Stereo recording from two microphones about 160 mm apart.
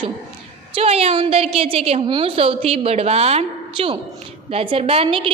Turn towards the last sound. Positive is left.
turn(degrees=-35)  # may be behind; listen again after turning